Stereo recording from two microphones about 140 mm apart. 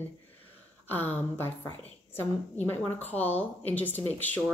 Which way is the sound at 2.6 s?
15° left (ahead or behind).